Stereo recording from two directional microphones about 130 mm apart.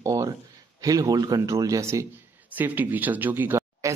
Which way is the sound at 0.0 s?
25° right (ahead or behind).